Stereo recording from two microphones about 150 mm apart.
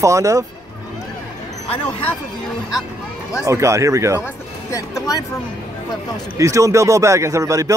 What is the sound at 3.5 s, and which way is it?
Speech, 20° right (ahead or behind).